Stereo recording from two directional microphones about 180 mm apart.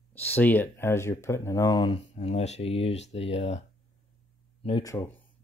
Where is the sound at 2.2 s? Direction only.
35° left (ahead or behind).